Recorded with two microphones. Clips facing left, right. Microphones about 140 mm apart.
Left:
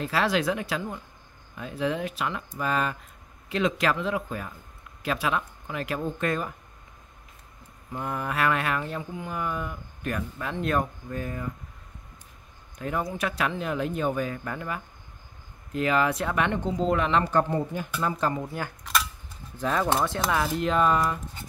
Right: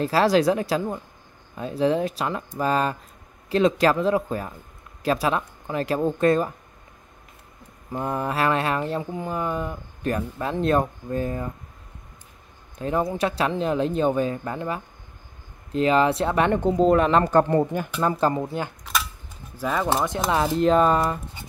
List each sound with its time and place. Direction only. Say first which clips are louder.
0.0 s speech: right 6 dB; 35° right (ahead or behind)
7.9 s speech: right 5 dB; 35° right (ahead or behind)
12.7 s speech: right 6 dB; 30° right (ahead or behind)
16.5 s speech: right 7 dB; 50° right (ahead or behind)
17.5 s speech: right 7 dB; 60° right (ahead or behind)
18.2 s speech: right 5 dB; 30° right (ahead or behind)
19.5 s speech: right 1 dB; 5° right (ahead or behind)
20.1 s speech: right 4 dB; 20° right (ahead or behind)